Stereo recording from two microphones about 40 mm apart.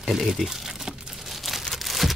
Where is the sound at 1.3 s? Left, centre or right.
Centre.